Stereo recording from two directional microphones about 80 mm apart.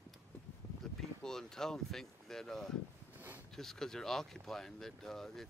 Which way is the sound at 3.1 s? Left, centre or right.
Right.